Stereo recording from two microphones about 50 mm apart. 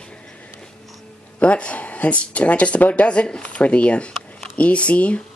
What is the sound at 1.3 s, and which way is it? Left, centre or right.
Speech, left.